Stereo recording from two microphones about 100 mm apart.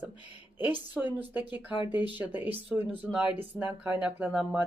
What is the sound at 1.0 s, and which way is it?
Speech, centre (ahead or behind).